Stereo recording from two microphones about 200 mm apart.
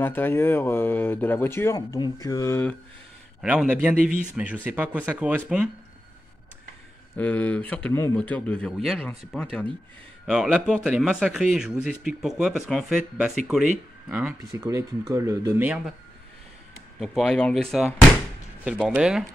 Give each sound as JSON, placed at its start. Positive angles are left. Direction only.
{"t": 0.0, "sound": "speech", "side_deg": 10}
{"t": 3.3, "sound": "speech", "side_deg": -5}
{"t": 7.2, "sound": "speech", "side_deg": 10}
{"t": 14.1, "sound": "speech", "side_deg": -10}
{"t": 17.0, "sound": "speech", "side_deg": 0}